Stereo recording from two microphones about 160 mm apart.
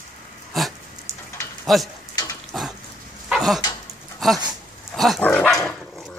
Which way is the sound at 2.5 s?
Centre (ahead or behind).